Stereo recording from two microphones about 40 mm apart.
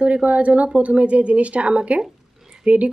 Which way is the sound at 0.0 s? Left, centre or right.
Right.